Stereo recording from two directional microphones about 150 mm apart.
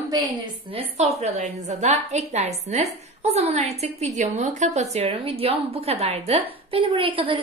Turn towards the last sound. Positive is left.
turn(degrees=-35)  # may be behind; listen again after turning